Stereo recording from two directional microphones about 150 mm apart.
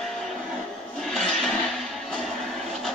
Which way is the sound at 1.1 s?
5° left (ahead or behind).